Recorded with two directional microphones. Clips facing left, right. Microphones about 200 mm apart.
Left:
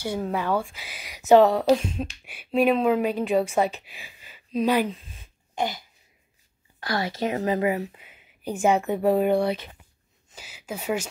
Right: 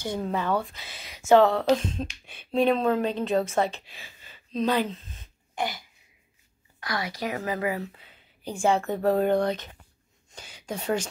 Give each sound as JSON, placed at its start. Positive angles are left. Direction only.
{"t": 0.0, "sound": "a woman's voice", "side_deg": 10}
{"t": 2.5, "sound": "speech", "side_deg": 5}
{"t": 6.8, "sound": "a woman's voice", "side_deg": 30}